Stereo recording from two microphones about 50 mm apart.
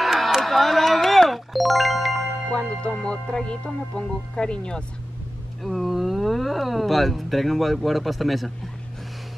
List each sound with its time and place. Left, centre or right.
0.0 s a sound: centre
0.4 s music: centre
2.5 s music: centre
5.6 s speech: centre